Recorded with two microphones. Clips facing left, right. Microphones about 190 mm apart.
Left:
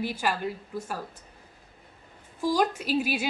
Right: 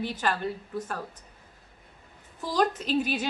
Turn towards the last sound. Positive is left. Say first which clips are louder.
# even
turn(degrees=10)  # may be behind; listen again after turning